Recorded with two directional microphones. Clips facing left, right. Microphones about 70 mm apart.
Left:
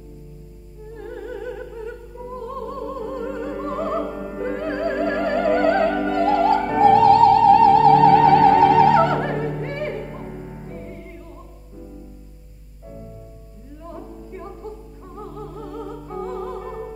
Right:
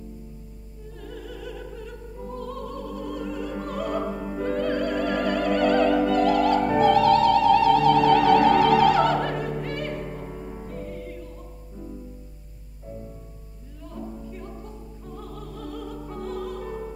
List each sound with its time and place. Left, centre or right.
0.9 s opera: left
13.8 s music: left
15.1 s opera: left